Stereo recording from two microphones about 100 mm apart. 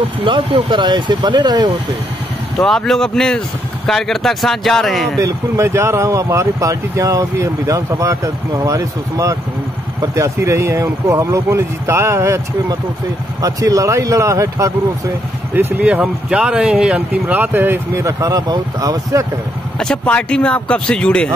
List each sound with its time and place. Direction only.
0.2 s speech: 60° right (ahead or behind); by 1.7 s 45° right (ahead or behind)
2.6 s speech: 5° left (ahead or behind)
5.2 s speech: 30° right (ahead or behind)
15.5 s speech: 15° right (ahead or behind)
18.0 s speech: 35° right (ahead or behind)
19.8 s speech: 10° left (ahead or behind)